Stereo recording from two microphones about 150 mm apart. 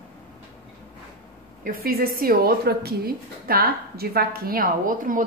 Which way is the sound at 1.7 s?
80° right.